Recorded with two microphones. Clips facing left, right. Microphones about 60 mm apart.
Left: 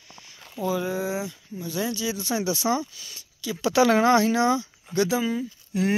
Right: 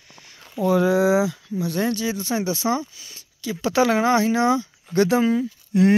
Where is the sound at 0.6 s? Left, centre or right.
Right.